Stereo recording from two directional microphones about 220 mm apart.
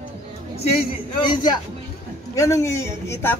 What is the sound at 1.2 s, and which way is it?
A man's voice, 20° left (ahead or behind).